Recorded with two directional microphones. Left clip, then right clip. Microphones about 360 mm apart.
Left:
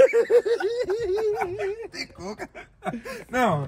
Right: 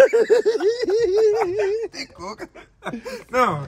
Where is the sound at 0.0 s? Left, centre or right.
Right.